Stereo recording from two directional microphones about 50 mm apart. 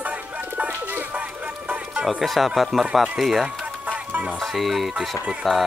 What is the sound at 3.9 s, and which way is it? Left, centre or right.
Music, right.